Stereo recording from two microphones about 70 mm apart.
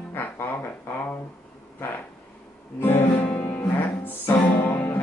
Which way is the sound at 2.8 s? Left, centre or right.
Left.